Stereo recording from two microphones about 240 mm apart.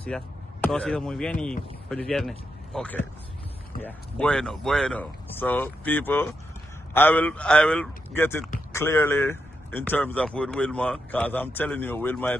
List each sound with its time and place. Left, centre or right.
0.0 s speech: centre